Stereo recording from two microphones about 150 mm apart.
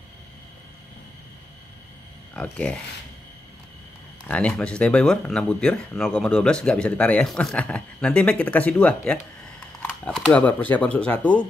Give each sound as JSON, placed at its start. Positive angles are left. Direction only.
{"t": 2.3, "sound": "speech", "side_deg": 10}
{"t": 4.3, "sound": "speech", "side_deg": 5}